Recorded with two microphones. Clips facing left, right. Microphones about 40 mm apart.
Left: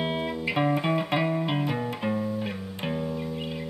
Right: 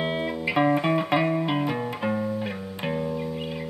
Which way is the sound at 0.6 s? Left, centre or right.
Centre.